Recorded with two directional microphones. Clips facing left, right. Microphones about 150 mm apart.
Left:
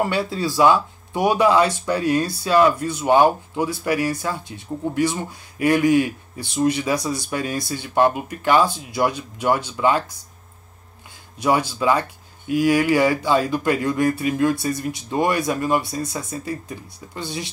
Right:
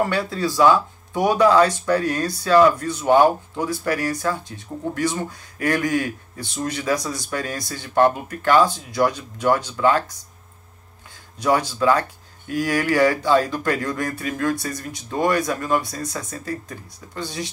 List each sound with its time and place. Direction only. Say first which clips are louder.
0.1 s speech: even; 10° left (ahead or behind)
11.4 s speech: even; 10° left (ahead or behind)
16.4 s speech: left 1 dB; 10° left (ahead or behind)